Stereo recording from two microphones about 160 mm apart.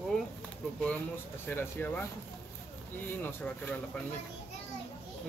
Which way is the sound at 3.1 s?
10° left (ahead or behind).